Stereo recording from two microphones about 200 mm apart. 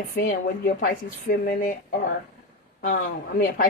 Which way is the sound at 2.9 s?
45° left (ahead or behind).